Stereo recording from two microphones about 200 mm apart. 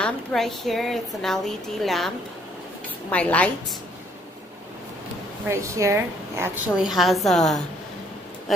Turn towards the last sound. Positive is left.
turn(degrees=0)  # may be behind; listen again after turning